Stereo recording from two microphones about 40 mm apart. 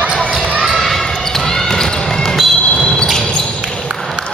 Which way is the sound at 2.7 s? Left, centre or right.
Centre.